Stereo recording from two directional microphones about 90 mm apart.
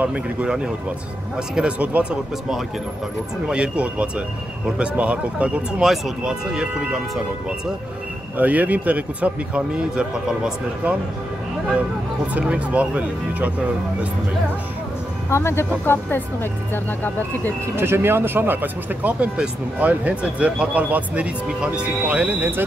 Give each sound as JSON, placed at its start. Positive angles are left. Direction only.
{"t": 0.0, "sound": "speech", "side_deg": -15}
{"t": 3.4, "sound": "speech", "side_deg": -15}
{"t": 8.4, "sound": "speech", "side_deg": -15}
{"t": 12.4, "sound": "speech", "side_deg": -15}
{"t": 15.2, "sound": "speech", "side_deg": 30}
{"t": 17.7, "sound": "speech", "side_deg": -30}